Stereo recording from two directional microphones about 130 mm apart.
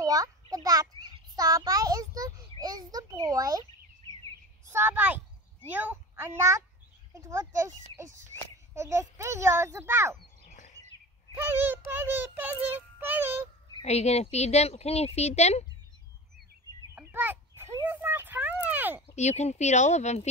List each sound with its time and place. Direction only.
0.0 s a sound: 25° right (ahead or behind)
4.7 s child singing: 15° right (ahead or behind)
5.7 s a child's voice: 15° right (ahead or behind)
8.7 s a child's voice: 25° right (ahead or behind)
11.4 s child singing: 15° right (ahead or behind)
13.8 s speech: 55° left (ahead or behind)
16.9 s a sound: 15° right (ahead or behind)
19.1 s speech: 60° left (ahead or behind)